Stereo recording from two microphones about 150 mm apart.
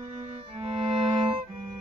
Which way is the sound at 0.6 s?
40° right (ahead or behind).